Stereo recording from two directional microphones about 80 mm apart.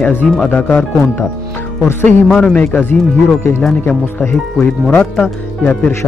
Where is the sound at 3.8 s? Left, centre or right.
Centre.